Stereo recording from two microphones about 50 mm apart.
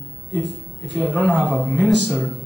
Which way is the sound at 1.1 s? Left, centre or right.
Left.